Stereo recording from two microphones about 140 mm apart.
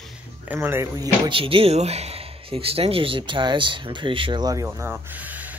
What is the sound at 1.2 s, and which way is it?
Speech, 40° right (ahead or behind).